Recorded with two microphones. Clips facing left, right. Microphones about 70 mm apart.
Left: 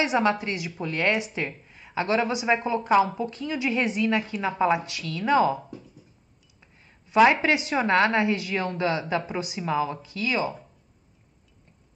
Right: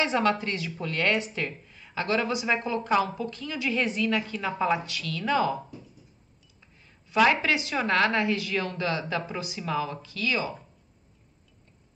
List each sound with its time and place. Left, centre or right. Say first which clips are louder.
0.0 s a woman's voice: left 2 dB; centre
6.6 s a woman's voice: left 2 dB; centre